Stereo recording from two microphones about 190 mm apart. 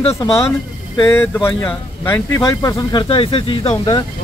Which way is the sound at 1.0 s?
15° left (ahead or behind).